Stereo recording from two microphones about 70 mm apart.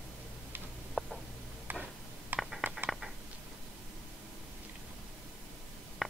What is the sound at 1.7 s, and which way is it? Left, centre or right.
Tick-tock, right.